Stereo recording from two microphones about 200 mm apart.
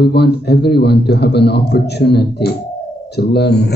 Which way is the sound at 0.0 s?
55° left (ahead or behind).